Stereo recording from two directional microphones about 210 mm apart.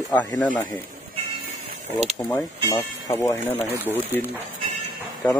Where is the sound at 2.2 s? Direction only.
20° left (ahead or behind).